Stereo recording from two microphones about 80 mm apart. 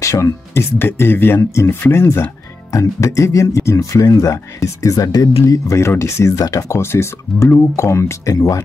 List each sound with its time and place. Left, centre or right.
0.0 s speech: left
5.5 s speech: left